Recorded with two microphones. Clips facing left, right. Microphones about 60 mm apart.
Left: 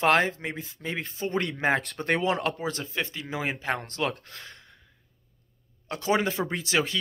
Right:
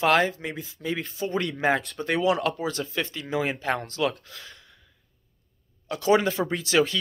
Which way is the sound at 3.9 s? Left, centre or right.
Left.